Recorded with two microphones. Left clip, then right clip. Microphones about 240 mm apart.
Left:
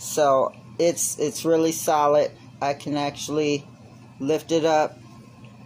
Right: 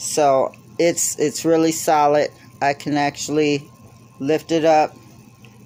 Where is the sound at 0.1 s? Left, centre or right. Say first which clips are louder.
Right 3 dB; right.